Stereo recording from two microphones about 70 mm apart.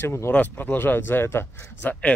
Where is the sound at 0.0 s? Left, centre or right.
Left.